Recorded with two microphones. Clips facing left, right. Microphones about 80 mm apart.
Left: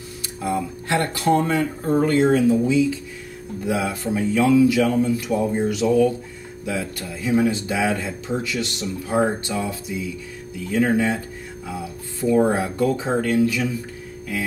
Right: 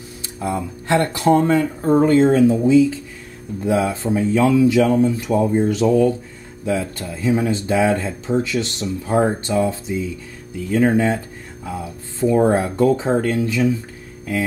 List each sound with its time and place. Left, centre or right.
0.2 s speech: right
12.4 s speech: right